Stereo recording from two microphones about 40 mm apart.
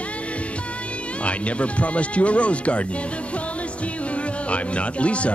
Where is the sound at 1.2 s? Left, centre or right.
Left.